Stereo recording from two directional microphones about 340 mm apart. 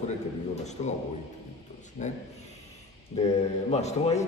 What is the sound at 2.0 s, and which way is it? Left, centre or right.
Speech, left.